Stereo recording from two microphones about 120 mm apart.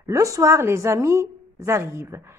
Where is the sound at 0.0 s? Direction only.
25° right (ahead or behind).